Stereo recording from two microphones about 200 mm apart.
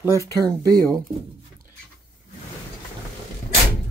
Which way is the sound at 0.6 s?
15° right (ahead or behind).